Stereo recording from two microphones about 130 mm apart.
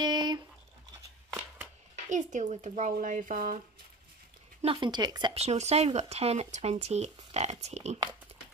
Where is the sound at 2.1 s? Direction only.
70° right (ahead or behind); by 3.6 s 90° right.